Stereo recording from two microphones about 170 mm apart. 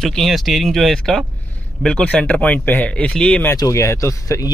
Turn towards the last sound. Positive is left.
turn(degrees=20)  # may be behind; listen again after turning